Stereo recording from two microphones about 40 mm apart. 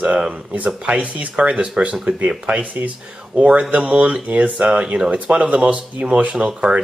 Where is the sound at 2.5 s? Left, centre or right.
Right.